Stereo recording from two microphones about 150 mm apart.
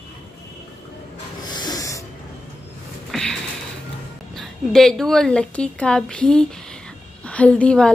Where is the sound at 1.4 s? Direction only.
25° left (ahead or behind).